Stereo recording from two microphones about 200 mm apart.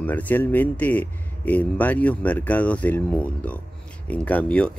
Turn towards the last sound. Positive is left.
turn(degrees=5)  # may be behind; listen again after turning